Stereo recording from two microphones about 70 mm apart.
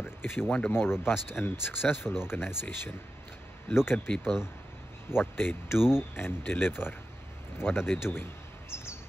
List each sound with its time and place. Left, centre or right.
0.0 s a sound: left
0.7 s speech: left
4.2 s speech: centre
5.1 s speech: left
5.8 s speech: centre
6.1 s speech: left
7.5 s bird: left